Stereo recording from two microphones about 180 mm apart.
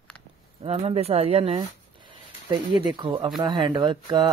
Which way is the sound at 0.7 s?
35° right (ahead or behind).